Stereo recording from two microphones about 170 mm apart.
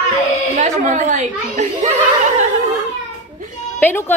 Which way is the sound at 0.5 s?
45° right (ahead or behind).